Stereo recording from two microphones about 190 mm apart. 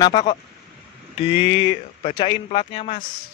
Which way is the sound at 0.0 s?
20° left (ahead or behind).